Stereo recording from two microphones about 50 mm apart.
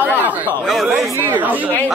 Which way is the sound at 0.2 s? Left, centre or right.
Right.